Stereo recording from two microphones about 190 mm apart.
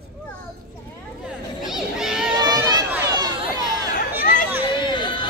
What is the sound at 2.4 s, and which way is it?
Run, 20° right (ahead or behind).